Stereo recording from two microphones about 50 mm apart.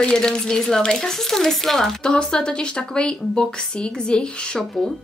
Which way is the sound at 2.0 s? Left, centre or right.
Centre.